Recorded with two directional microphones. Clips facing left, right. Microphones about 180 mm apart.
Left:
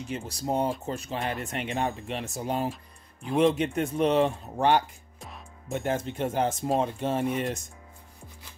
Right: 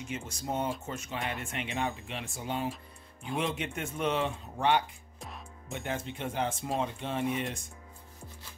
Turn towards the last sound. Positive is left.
turn(degrees=45)  # may be behind; listen again after turning